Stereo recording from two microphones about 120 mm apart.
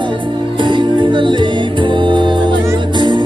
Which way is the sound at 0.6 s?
40° right (ahead or behind).